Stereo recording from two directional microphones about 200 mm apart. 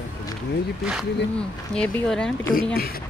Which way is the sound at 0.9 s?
5° left (ahead or behind).